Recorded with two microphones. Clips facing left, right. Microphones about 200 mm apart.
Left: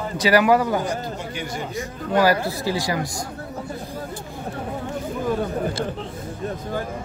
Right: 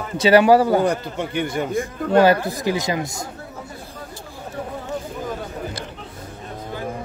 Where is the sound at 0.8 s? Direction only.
60° right (ahead or behind).